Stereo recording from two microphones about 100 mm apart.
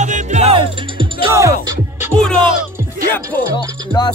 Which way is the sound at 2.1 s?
10° left (ahead or behind).